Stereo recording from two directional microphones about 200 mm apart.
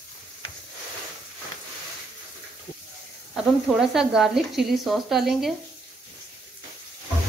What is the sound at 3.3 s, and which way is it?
Speech, centre (ahead or behind).